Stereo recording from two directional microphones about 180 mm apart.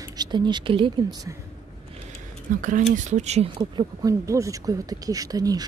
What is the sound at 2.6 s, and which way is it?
Speech, 45° right (ahead or behind).